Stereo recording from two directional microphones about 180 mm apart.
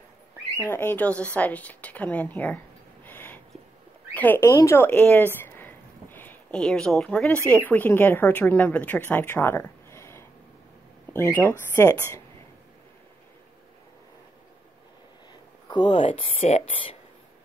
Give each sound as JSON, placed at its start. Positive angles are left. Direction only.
{"t": 0.6, "sound": "a woman's voice", "side_deg": 10}
{"t": 3.1, "sound": "a sound", "side_deg": 10}
{"t": 4.1, "sound": "a woman's voice", "side_deg": 10}
{"t": 15.7, "sound": "speech", "side_deg": 25}
{"t": 16.0, "sound": "speech", "side_deg": 40}